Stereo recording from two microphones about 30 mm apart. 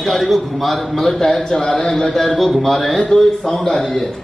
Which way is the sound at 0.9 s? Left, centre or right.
Centre.